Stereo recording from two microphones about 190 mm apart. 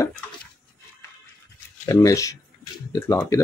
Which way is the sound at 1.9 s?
15° left (ahead or behind).